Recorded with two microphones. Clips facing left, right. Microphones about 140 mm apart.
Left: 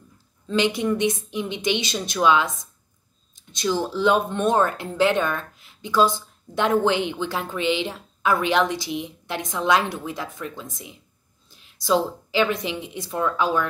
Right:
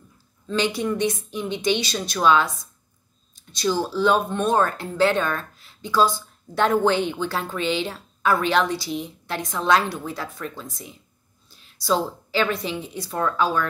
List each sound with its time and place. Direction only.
0.5 s speech: 20° left (ahead or behind)
3.5 s a woman's voice: 20° left (ahead or behind)